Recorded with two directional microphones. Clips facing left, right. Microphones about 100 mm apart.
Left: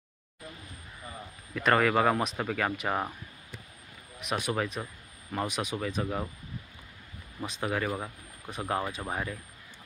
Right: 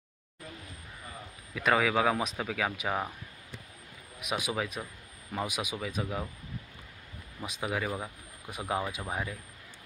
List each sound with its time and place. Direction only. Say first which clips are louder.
1.5 s speech: left 2 dB; centre (ahead or behind)
4.2 s speech: left 2 dB; 5° right (ahead or behind)
7.4 s speech: left 2 dB; 10° right (ahead or behind)